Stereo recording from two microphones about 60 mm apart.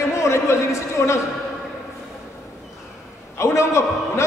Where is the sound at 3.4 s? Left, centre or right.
Left.